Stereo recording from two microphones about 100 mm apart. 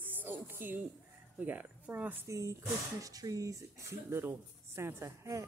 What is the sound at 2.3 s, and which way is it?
Speech, 35° right (ahead or behind).